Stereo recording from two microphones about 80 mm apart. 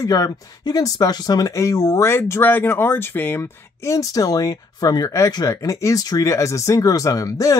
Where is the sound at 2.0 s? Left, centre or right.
Left.